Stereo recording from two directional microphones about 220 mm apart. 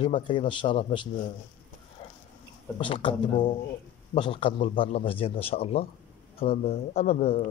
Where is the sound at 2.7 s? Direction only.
25° left (ahead or behind).